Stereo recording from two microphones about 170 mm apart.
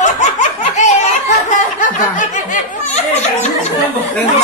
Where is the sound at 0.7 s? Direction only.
45° left (ahead or behind).